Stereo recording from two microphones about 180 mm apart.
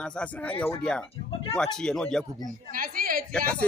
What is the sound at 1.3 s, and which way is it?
Speech, 30° left (ahead or behind).